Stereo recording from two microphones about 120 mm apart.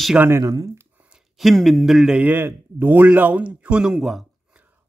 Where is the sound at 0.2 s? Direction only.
25° right (ahead or behind).